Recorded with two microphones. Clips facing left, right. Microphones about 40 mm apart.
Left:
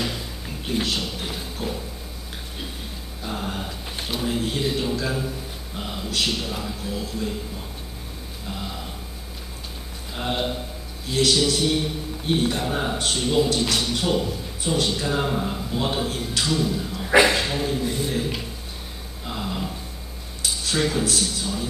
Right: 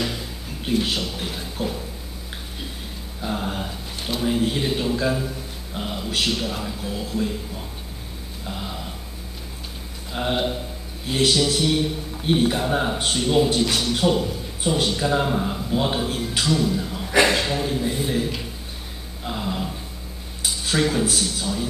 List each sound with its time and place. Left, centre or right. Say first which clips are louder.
0.0 s a sound: right 1 dB; centre
3.2 s a man's voice: right 3 dB; centre
8.5 s a man's voice: right 1 dB; centre
10.1 s a man's voice: right 3 dB; centre
17.8 s a man's voice: right 1 dB; centre
19.2 s a sound: right 2 dB; centre
20.6 s a man's voice: right 2 dB; centre